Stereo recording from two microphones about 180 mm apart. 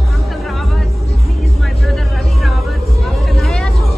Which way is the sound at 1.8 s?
Centre (ahead or behind).